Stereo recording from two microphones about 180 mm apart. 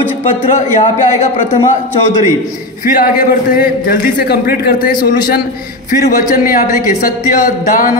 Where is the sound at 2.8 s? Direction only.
50° left (ahead or behind).